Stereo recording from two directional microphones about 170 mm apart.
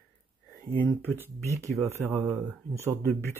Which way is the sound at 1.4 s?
15° right (ahead or behind).